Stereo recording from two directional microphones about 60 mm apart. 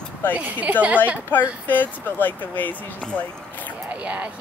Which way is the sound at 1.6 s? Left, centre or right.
Left.